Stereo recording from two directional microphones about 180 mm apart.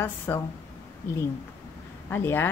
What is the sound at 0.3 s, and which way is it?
Speech, 15° left (ahead or behind).